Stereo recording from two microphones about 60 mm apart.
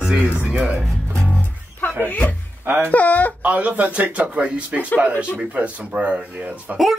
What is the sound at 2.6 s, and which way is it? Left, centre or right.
Speech, right.